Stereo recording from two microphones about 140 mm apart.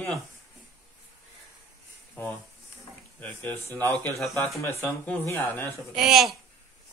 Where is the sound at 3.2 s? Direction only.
10° left (ahead or behind).